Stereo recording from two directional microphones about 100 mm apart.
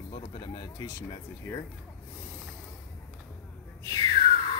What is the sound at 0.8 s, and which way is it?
Speech, 30° left (ahead or behind).